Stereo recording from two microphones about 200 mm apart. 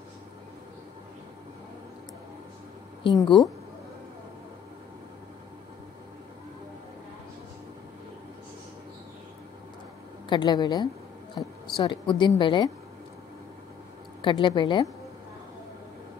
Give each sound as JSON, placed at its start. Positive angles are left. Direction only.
{"t": 3.0, "sound": "speech", "side_deg": 25}
{"t": 10.3, "sound": "a woman's voice", "side_deg": 20}
{"t": 14.2, "sound": "a woman's voice", "side_deg": 25}